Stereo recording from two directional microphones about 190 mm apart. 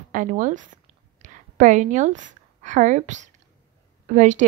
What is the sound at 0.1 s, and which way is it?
A woman's voice, 45° right (ahead or behind).